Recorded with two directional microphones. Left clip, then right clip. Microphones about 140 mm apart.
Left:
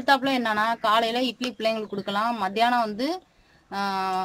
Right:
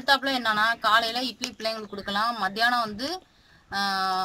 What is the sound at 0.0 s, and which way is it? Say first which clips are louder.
Speech: left 1 dB; 15° left (ahead or behind).